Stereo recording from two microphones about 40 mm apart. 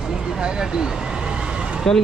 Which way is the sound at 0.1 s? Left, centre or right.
Centre.